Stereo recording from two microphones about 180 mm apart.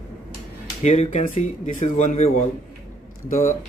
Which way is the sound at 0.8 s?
40° left (ahead or behind).